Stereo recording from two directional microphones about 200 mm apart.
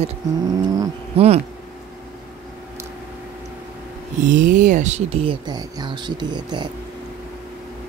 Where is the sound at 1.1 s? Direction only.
30° right (ahead or behind).